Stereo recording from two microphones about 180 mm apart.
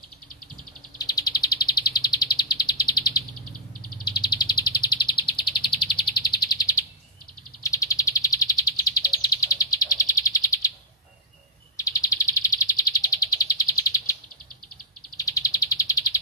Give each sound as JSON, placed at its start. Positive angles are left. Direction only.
{"t": 0.9, "sound": "bird", "side_deg": 20}
{"t": 11.7, "sound": "bird", "side_deg": 20}
{"t": 15.1, "sound": "bird", "side_deg": 20}